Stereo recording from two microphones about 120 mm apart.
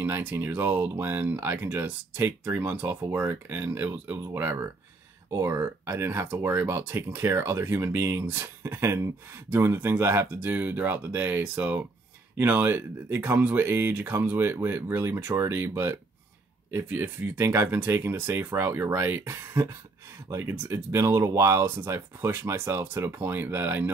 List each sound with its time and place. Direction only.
0.0 s speech: 15° right (ahead or behind)